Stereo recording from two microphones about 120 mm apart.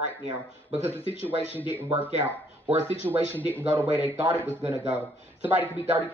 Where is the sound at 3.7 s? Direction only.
15° right (ahead or behind).